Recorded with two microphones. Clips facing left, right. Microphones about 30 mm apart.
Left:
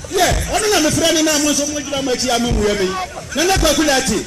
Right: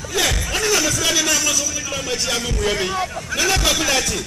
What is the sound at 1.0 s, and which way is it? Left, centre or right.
Speech, centre.